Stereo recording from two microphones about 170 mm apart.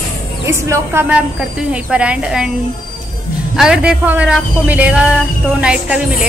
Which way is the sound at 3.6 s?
5° right (ahead or behind).